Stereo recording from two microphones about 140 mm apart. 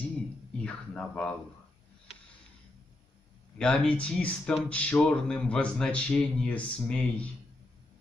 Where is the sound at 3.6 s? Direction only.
5° left (ahead or behind).